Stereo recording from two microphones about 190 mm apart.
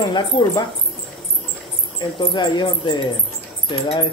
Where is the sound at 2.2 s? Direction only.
25° left (ahead or behind).